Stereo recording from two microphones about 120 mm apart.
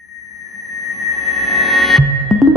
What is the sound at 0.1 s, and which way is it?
Music, centre (ahead or behind).